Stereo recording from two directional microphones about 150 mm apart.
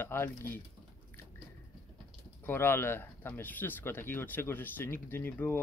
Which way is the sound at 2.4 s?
15° left (ahead or behind).